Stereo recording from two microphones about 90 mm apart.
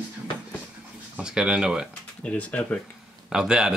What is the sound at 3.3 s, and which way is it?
Speech, 10° right (ahead or behind).